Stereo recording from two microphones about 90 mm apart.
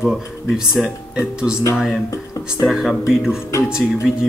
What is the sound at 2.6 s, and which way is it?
Speech, centre (ahead or behind).